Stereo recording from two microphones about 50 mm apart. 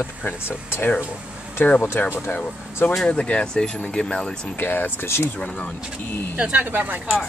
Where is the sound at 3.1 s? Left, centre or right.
Left.